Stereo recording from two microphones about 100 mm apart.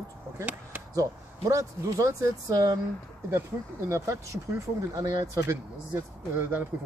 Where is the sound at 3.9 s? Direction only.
30° right (ahead or behind).